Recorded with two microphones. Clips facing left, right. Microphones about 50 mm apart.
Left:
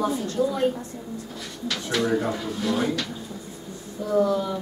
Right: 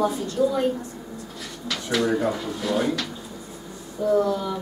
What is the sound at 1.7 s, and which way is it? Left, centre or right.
A woman's voice, centre.